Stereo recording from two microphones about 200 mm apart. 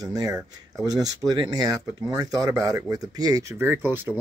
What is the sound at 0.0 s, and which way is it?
Speech, 20° right (ahead or behind).